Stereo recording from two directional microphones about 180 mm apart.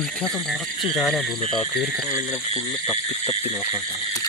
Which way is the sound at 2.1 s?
15° left (ahead or behind).